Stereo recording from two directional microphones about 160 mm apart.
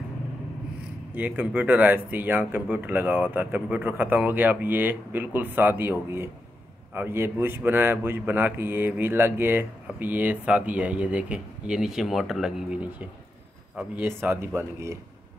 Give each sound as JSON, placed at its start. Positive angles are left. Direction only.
{"t": 1.1, "sound": "speech", "side_deg": -10}